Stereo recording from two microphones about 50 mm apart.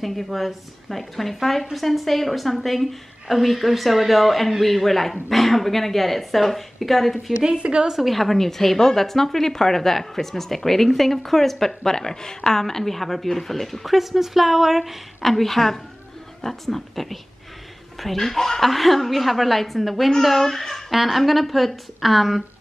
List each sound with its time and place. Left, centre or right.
0.0 s a woman's voice: centre
7.4 s a woman's voice: centre
7.9 s a woman's voice: centre
20.9 s a woman's voice: centre